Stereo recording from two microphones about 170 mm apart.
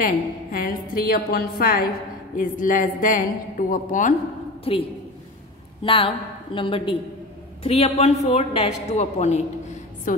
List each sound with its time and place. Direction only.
0.0 s a woman's voice: 55° left (ahead or behind)
2.3 s a woman's voice: 50° left (ahead or behind)
4.7 s speech: 35° left (ahead or behind)
5.9 s a woman's voice: 30° left (ahead or behind); by 10.2 s 50° left (ahead or behind)